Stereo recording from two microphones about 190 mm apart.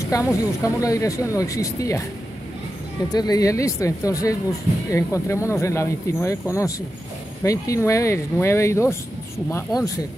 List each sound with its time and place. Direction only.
0.0 s speech: 15° left (ahead or behind)
3.1 s speech: 20° left (ahead or behind)
7.4 s speech: 15° left (ahead or behind)